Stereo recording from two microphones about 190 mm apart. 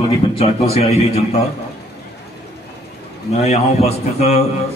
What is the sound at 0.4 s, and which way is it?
Speech, 30° left (ahead or behind).